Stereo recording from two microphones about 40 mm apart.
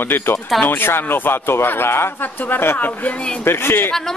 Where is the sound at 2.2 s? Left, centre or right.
Left.